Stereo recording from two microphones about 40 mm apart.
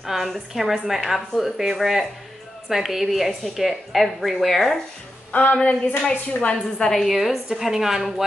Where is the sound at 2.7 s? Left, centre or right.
Centre.